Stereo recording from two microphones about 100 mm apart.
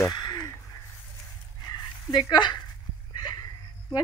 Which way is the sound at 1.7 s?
45° left (ahead or behind).